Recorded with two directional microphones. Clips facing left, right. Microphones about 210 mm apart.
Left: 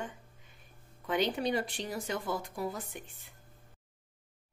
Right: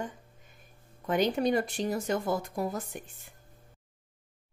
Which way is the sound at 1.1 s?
45° right (ahead or behind).